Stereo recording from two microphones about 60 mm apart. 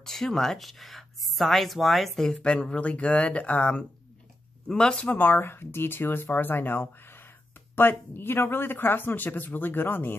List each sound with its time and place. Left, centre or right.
0.0 s speech: centre
2.4 s speech: centre; by 10.1 s left